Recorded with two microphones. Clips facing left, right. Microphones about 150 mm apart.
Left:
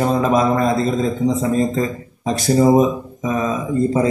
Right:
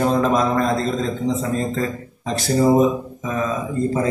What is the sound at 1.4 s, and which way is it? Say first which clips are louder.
Speech: left 4 dB; 15° left (ahead or behind).